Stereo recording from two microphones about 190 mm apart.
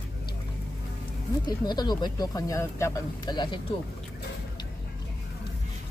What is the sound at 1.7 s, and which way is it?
Speech, 20° left (ahead or behind).